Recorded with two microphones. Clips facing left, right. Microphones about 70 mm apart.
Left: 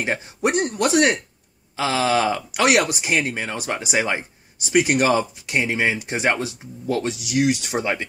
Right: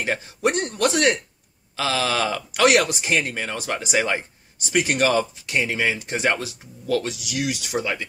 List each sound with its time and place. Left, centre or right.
0.0 s speech: centre